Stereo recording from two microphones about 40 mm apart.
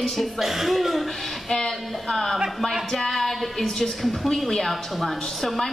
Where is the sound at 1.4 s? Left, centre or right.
Centre.